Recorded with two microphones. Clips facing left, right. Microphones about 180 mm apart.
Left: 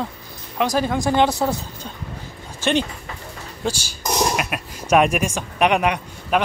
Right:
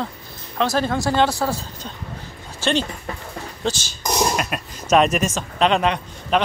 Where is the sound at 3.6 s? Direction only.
10° left (ahead or behind).